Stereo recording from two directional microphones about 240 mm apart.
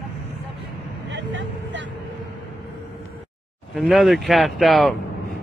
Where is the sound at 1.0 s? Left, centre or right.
Right.